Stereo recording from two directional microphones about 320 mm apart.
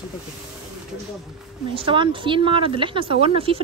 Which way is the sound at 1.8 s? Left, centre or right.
Centre.